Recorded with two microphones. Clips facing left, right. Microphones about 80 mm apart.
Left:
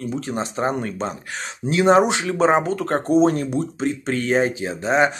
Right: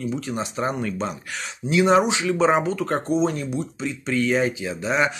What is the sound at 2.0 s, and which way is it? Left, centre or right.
Speech, left.